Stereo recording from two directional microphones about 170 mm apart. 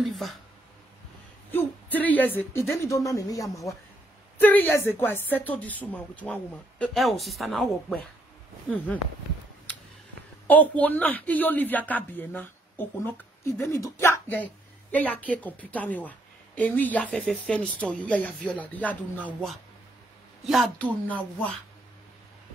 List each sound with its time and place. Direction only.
0.0 s speech: centre (ahead or behind)
1.5 s speech: 10° left (ahead or behind)
10.4 s speech: 10° left (ahead or behind)